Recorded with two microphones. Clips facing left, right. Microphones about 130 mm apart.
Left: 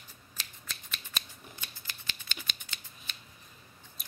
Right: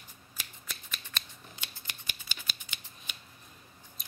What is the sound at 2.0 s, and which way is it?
Scissors, 10° right (ahead or behind).